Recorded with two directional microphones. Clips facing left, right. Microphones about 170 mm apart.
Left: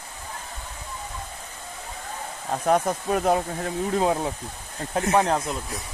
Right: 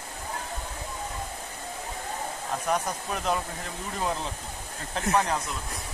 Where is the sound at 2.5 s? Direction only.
50° left (ahead or behind).